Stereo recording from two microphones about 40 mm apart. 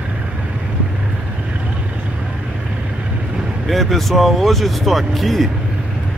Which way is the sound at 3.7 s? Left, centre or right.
Centre.